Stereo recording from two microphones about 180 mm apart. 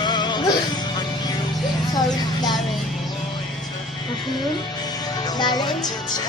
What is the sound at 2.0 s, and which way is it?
Music, 25° left (ahead or behind).